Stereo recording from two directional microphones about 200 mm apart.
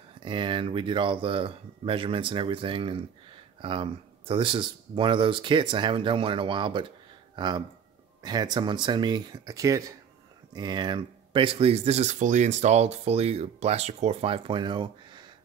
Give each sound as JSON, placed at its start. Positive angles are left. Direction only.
{"t": 0.2, "sound": "speech", "side_deg": -25}